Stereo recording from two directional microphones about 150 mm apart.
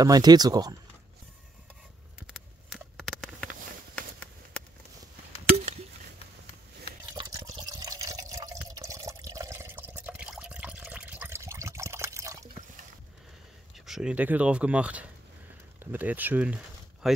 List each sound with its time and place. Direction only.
0.0 s speech: 25° right (ahead or behind)
2.1 s a sound: centre (ahead or behind)
7.2 s water: 25° right (ahead or behind)
7.5 s liquid: 25° right (ahead or behind)
8.6 s water: 20° right (ahead or behind)
13.7 s speech: 5° right (ahead or behind)